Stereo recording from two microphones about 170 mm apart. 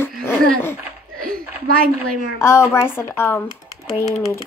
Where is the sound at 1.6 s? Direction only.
60° right (ahead or behind).